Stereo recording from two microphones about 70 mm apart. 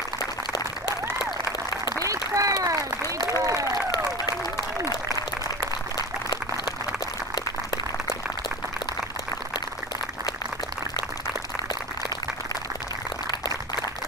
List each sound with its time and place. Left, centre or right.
0.2 s applause: left
2.0 s applause: right
5.6 s a sound: left